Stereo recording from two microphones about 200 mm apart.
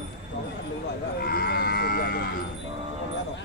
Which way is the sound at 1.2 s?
50° left (ahead or behind).